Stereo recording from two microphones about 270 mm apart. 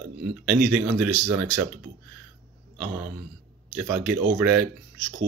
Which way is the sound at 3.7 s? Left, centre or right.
Centre.